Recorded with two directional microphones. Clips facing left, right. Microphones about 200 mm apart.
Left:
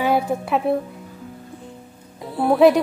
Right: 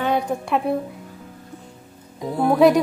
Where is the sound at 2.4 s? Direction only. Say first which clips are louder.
Left 1 dB; centre (ahead or behind).